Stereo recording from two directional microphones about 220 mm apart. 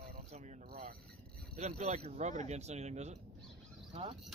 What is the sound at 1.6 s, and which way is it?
Speech, 30° right (ahead or behind).